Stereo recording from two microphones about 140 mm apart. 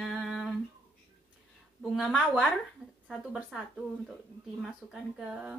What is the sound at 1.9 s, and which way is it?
A woman's voice, centre (ahead or behind).